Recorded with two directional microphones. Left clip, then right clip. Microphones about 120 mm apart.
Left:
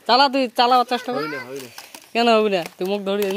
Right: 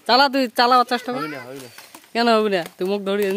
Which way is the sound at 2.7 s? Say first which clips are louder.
Even; 35° right (ahead or behind).